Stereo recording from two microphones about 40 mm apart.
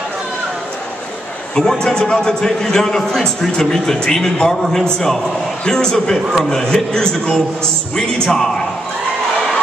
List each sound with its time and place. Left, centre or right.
1.5 s a man's voice: centre